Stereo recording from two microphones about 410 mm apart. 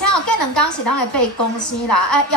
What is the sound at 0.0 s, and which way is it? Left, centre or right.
A woman's voice, left.